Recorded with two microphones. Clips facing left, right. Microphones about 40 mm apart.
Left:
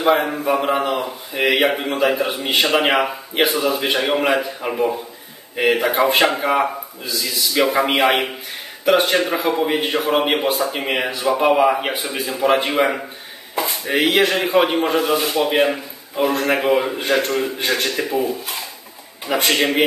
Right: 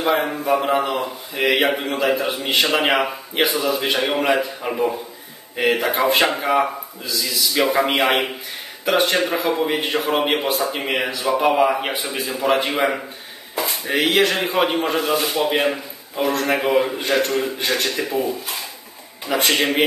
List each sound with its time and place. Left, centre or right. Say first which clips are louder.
0.0 s a man's voice: left 3 dB; centre
13.6 s chop: left 1 dB; centre
13.9 s speech: left 1 dB; centre
14.2 s a man's voice: left 2 dB; centre